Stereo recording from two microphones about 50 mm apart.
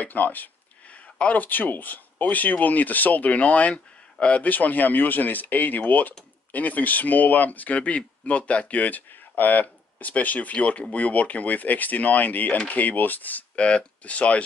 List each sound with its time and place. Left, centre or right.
0.0 s speech: left